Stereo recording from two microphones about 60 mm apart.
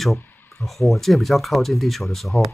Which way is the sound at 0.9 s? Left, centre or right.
Centre.